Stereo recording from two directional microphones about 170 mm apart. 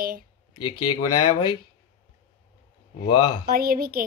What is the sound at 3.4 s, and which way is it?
Speech, 60° right (ahead or behind).